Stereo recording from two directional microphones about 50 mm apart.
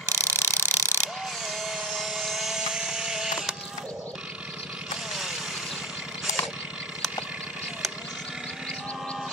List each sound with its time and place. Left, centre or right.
0.1 s mechanisms: right
1.4 s vehicle: centre
2.0 s mechanisms: centre
5.1 s vehicle: centre